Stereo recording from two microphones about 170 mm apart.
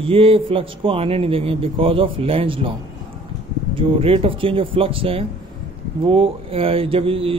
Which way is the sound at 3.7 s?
35° right (ahead or behind).